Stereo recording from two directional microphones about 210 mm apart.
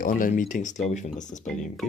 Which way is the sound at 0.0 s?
40° left (ahead or behind).